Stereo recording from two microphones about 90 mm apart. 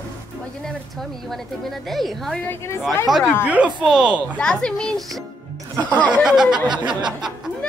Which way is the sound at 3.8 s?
10° right (ahead or behind).